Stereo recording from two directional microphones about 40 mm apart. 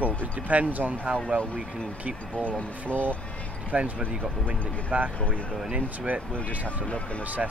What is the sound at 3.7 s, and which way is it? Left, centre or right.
Speech, right.